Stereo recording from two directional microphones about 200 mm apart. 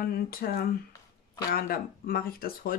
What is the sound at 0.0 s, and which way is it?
Speech, 45° left (ahead or behind).